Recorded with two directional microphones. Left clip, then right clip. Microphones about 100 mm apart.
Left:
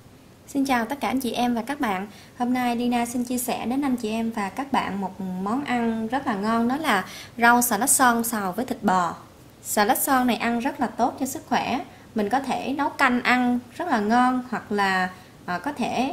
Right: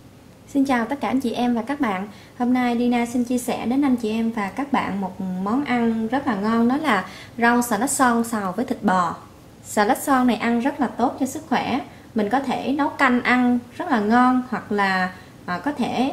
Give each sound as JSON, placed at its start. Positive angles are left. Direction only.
{"t": 0.5, "sound": "a woman's voice", "side_deg": 45}